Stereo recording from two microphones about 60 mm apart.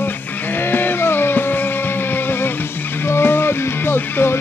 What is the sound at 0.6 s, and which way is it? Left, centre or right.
Vehicle, left.